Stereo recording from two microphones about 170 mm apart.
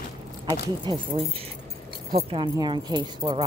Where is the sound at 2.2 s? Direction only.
30° right (ahead or behind).